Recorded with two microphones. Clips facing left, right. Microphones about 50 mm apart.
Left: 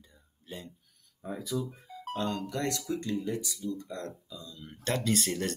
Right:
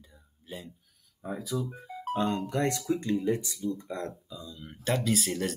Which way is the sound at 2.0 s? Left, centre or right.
Right.